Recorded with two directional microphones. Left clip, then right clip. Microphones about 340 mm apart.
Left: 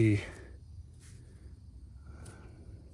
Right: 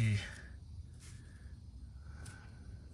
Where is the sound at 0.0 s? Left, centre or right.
Centre.